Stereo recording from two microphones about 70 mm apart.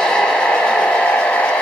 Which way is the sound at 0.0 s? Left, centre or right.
Centre.